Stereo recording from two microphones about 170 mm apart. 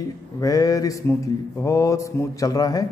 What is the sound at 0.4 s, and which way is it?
Mantra, 20° left (ahead or behind).